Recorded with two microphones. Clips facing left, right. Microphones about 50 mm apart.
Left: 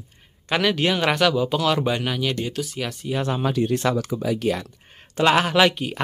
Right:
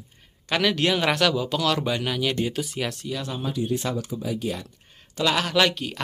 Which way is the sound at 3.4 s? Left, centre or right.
Left.